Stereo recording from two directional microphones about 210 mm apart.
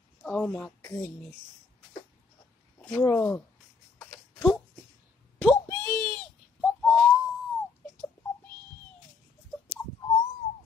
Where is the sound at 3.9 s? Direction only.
Centre (ahead or behind).